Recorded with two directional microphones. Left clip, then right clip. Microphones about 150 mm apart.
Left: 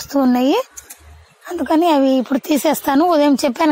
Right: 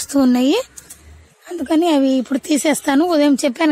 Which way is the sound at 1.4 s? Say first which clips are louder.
Left 2 dB; 15° right (ahead or behind).